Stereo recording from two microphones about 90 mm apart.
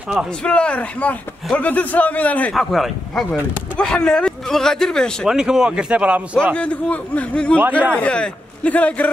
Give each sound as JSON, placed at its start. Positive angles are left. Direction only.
{"t": 0.4, "sound": "speech", "side_deg": 10}
{"t": 2.5, "sound": "speech", "side_deg": 0}
{"t": 5.3, "sound": "a man's voice", "side_deg": -5}
{"t": 6.5, "sound": "speech", "side_deg": 15}